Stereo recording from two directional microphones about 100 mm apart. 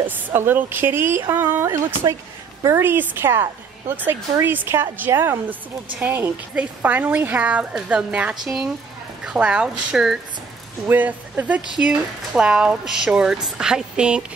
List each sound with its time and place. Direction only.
0.3 s speech: 20° right (ahead or behind)